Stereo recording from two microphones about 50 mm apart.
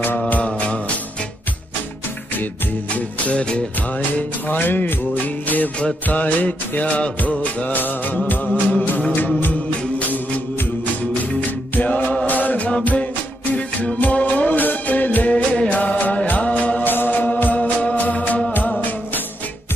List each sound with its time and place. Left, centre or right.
0.3 s music: left
3.3 s music: left
4.5 s music: left
11.7 s music: left
14.1 s music: left
15.3 s music: left
16.8 s music: left